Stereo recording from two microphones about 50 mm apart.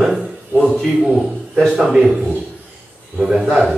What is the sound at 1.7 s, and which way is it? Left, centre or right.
Speech, right.